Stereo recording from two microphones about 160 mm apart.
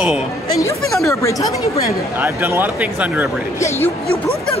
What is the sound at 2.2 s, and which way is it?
Speech, 15° right (ahead or behind).